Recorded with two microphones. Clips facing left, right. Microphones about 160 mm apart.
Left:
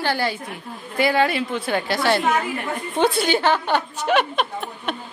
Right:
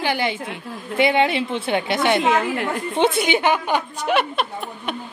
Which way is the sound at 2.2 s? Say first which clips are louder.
Right 3 dB; 90° right.